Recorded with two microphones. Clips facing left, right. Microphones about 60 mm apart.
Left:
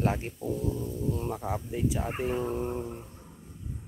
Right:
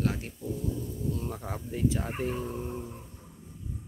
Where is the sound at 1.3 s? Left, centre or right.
Centre.